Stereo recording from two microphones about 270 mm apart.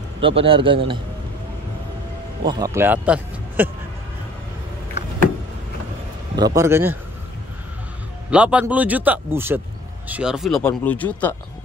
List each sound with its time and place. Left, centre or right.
0.2 s a man's voice: centre
2.4 s speech: centre
6.3 s speech: centre
8.3 s speech: centre